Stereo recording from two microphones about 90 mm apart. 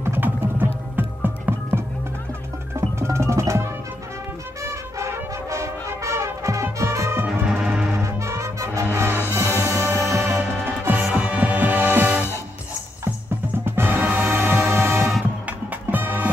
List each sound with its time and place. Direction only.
0.0 s music: 25° right (ahead or behind)
2.7 s music: 30° right (ahead or behind)
4.6 s music: 35° right (ahead or behind)
7.2 s music: 10° right (ahead or behind)
8.0 s music: 35° right (ahead or behind)
11.0 s music: 15° right (ahead or behind)
13.7 s music: 25° right (ahead or behind)
13.9 s music: centre (ahead or behind)
14.3 s music: 30° right (ahead or behind)